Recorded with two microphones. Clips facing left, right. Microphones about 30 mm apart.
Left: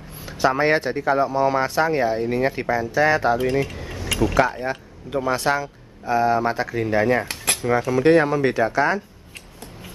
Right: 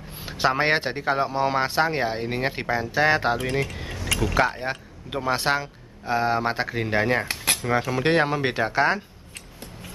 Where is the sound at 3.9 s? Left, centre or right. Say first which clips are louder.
Left 3 dB; centre.